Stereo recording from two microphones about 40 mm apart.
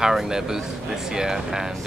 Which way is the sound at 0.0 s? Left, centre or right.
Centre.